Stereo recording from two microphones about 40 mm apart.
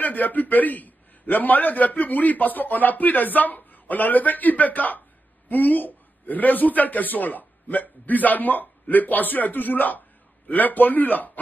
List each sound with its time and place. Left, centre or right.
0.0 s a man's voice: left